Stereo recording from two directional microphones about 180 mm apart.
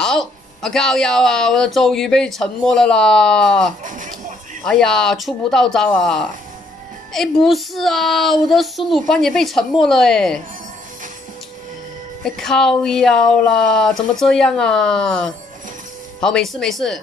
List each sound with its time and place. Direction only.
0.0 s speech: 5° left (ahead or behind)
3.8 s speech: 45° right (ahead or behind)
4.6 s speech: 5° left (ahead or behind)
12.3 s speech: centre (ahead or behind)